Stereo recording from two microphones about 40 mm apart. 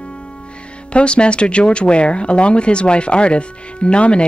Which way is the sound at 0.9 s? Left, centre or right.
Left.